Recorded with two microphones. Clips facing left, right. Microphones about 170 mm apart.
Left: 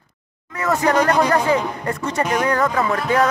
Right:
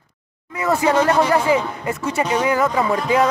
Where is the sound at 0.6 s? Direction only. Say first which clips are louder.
Right 1 dB; 10° right (ahead or behind).